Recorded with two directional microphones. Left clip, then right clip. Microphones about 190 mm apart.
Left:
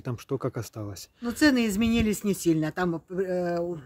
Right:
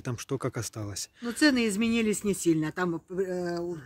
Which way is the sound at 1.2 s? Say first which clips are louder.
Left 2 dB; 65° left (ahead or behind).